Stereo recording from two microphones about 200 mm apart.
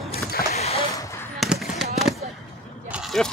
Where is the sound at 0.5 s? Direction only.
30° left (ahead or behind).